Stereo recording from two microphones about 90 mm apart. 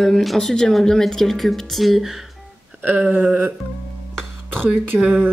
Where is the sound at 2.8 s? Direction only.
20° right (ahead or behind).